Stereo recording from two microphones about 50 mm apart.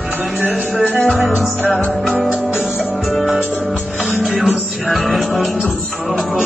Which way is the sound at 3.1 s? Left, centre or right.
Centre.